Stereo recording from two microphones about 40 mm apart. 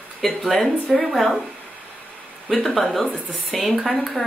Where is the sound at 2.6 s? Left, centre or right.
Centre.